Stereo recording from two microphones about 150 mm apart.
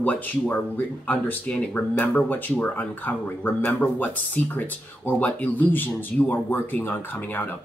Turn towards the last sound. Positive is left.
turn(degrees=10)  # may be behind; listen again after turning